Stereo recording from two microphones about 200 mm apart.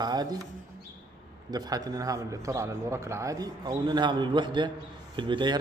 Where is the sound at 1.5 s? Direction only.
20° right (ahead or behind).